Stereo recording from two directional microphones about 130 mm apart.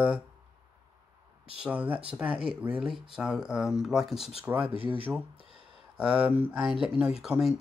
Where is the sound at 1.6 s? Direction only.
10° right (ahead or behind).